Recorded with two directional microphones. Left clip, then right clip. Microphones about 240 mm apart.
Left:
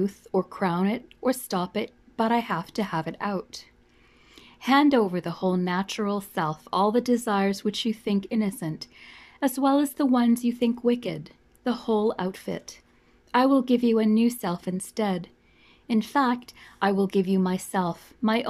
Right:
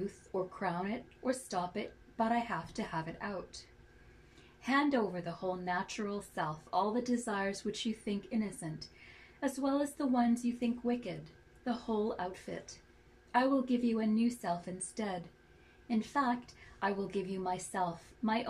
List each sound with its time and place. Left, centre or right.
0.6 s speech: left